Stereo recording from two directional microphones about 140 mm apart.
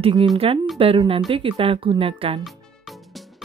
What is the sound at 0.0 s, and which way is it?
Speech, 40° right (ahead or behind).